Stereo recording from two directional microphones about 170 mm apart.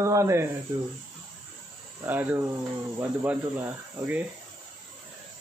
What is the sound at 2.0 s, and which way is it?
Speech, 10° right (ahead or behind).